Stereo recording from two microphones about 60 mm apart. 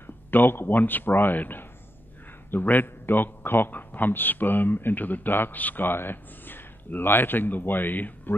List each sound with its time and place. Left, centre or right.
0.0 s a man's voice: left